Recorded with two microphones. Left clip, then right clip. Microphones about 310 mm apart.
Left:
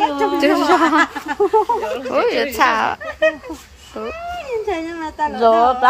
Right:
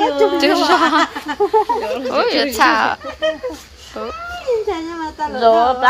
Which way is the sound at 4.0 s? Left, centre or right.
Centre.